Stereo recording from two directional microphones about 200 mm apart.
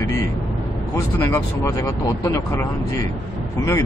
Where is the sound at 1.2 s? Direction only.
15° left (ahead or behind).